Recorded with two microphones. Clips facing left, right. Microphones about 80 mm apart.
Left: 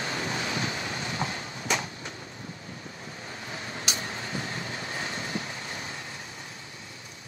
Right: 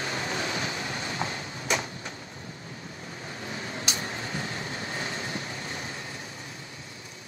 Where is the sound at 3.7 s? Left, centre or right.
Right.